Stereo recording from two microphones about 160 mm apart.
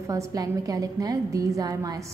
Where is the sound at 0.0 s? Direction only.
20° right (ahead or behind).